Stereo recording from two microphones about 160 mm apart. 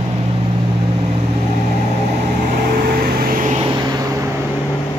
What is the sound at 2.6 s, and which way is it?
Vehicle, 70° right (ahead or behind).